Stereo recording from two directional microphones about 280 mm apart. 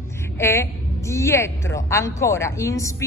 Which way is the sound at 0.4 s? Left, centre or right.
Centre.